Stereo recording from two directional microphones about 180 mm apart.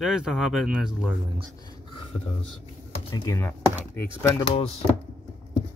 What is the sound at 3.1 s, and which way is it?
Speech, 20° left (ahead or behind).